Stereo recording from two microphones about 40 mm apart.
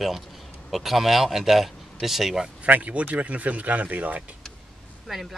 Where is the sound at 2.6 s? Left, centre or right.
Right.